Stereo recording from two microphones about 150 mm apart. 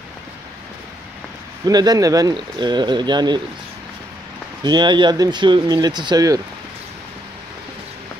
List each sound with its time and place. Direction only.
1.7 s speech: 25° right (ahead or behind)
4.6 s speech: 30° right (ahead or behind)